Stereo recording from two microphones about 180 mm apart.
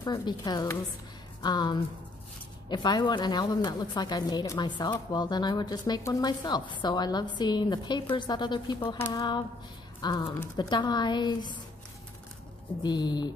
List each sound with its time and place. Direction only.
0.0 s a woman's voice: 25° left (ahead or behind)
8.9 s speech: 15° left (ahead or behind)
10.0 s a woman's voice: 25° left (ahead or behind)
12.8 s a woman's voice: 25° left (ahead or behind)